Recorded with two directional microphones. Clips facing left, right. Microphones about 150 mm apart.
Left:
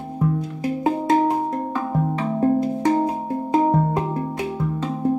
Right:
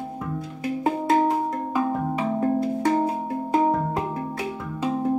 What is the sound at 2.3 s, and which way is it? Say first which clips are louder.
Music: left 6 dB; 30° left (ahead or behind).